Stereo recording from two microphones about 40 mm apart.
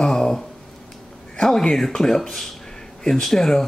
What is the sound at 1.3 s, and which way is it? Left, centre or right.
Speech, centre.